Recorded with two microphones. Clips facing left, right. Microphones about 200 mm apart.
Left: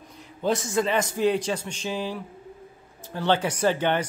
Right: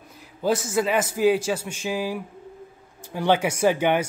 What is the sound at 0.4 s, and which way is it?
Speech, 5° right (ahead or behind).